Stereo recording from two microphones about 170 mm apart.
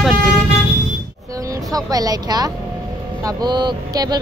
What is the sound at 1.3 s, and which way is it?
Music, 20° right (ahead or behind).